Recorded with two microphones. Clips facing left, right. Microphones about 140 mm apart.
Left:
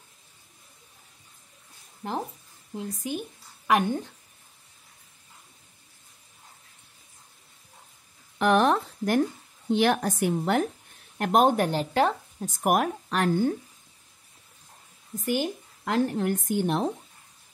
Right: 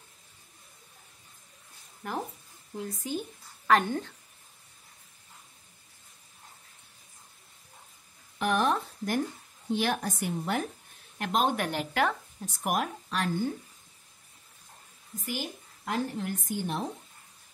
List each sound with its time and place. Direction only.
2.0 s a woman's voice: 25° left (ahead or behind)
8.4 s a sound: 65° left (ahead or behind)
9.7 s a woman's voice: 65° left (ahead or behind)
11.1 s a woman's voice: 50° left (ahead or behind); by 12.4 s 30° left (ahead or behind)
12.6 s speech: 55° left (ahead or behind)
15.2 s a woman's voice: 70° left (ahead or behind)